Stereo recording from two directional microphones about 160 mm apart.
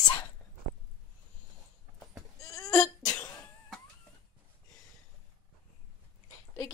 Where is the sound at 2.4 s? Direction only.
20° left (ahead or behind).